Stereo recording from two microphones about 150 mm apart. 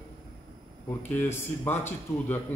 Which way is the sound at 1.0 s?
15° left (ahead or behind).